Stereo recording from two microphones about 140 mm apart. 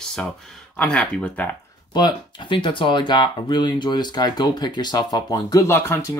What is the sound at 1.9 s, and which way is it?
Speech, 30° left (ahead or behind).